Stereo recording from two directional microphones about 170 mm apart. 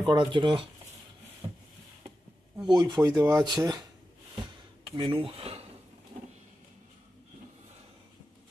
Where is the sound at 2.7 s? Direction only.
25° right (ahead or behind).